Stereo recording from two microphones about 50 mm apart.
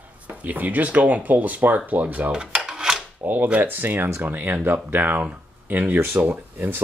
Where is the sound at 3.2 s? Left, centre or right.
Right.